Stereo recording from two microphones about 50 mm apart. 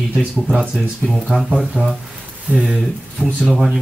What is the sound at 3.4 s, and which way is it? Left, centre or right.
Speech, centre.